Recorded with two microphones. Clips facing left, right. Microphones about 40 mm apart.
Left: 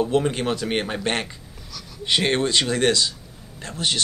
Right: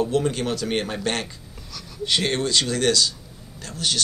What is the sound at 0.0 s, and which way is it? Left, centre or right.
Speech, left.